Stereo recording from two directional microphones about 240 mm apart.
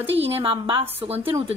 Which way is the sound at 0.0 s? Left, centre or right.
Right.